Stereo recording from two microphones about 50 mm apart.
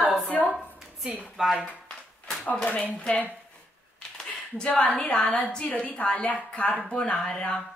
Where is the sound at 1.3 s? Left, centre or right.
Centre.